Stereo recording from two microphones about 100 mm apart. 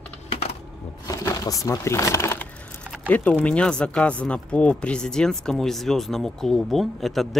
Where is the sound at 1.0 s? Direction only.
35° left (ahead or behind).